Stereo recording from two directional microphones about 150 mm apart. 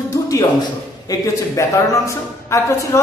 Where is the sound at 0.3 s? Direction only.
25° left (ahead or behind).